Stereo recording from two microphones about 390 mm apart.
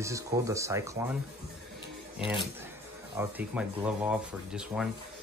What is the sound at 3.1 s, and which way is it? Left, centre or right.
Speech, centre.